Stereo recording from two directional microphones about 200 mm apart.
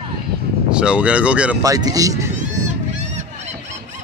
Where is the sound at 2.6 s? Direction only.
35° right (ahead or behind).